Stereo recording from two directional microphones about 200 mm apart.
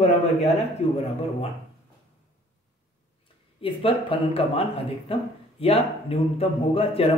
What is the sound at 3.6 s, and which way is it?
A man's voice, 30° left (ahead or behind).